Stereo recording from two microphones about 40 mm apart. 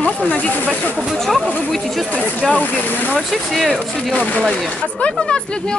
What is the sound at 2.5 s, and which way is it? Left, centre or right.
Speech, left.